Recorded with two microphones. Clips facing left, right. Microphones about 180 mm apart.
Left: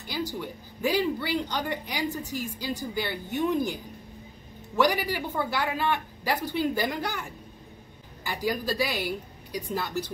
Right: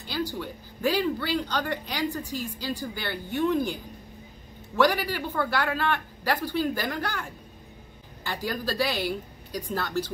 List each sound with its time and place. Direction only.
0.0 s speech: 15° left (ahead or behind)
4.7 s speech: 15° left (ahead or behind)
8.3 s speech: 15° left (ahead or behind)